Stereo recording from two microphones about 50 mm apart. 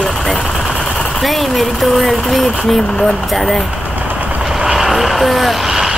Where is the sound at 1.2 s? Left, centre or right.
Centre.